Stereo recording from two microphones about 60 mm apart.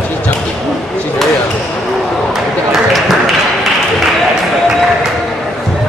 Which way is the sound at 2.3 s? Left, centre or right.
Centre.